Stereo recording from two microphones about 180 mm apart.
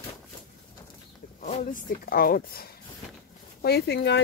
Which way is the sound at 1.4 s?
45° left (ahead or behind).